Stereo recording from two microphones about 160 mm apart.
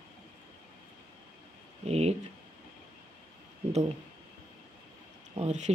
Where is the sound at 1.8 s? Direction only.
40° right (ahead or behind).